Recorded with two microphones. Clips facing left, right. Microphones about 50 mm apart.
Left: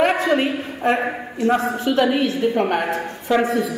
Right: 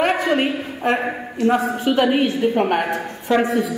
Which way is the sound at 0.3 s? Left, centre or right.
Centre.